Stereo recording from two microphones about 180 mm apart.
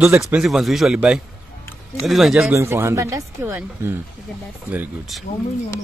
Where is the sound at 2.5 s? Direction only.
15° right (ahead or behind).